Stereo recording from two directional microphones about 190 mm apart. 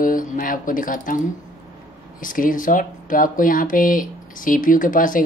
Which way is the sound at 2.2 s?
45° left (ahead or behind).